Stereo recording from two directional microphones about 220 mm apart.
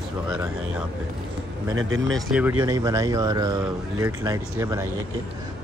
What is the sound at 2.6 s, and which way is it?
Speech, 15° right (ahead or behind).